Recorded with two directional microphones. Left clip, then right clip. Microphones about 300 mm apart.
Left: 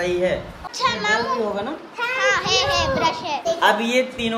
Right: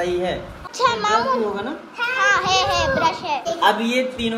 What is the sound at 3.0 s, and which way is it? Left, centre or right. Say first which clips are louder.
A child's voice: even; centre.